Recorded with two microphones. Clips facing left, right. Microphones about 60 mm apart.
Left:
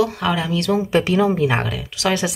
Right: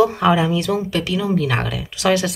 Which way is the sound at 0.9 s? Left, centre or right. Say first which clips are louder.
Left 4 dB; left.